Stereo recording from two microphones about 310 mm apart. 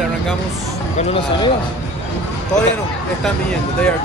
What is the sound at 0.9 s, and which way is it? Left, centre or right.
Speech, centre.